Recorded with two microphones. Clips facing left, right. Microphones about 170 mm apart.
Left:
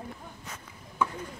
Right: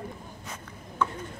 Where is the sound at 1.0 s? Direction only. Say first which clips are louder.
Even; 10° left (ahead or behind).